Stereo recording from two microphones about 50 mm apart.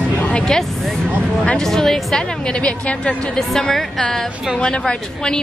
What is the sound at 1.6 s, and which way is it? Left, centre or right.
Speech, centre.